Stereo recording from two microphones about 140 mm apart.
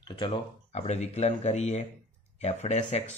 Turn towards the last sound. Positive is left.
turn(degrees=55)  # may be behind; listen again after turning